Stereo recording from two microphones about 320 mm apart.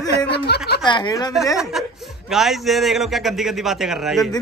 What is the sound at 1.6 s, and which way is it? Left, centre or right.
A man's voice, centre.